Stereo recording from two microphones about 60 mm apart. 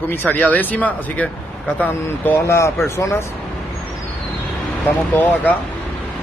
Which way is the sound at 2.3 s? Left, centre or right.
Left.